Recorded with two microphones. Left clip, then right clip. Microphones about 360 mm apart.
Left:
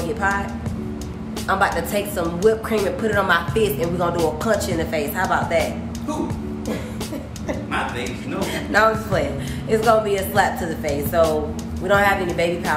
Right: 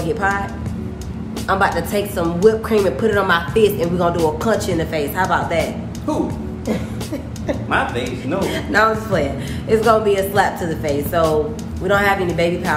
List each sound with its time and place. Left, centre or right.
0.0 s a woman's voice: centre
1.5 s a woman's voice: centre
8.4 s a woman's voice: centre